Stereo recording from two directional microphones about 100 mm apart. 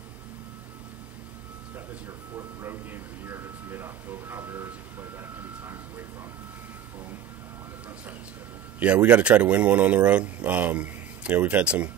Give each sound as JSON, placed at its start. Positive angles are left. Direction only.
{"t": 2.3, "sound": "speech", "side_deg": -25}
{"t": 8.7, "sound": "speech", "side_deg": -10}